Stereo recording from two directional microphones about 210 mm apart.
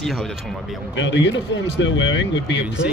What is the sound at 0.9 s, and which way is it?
Speech, 60° left (ahead or behind).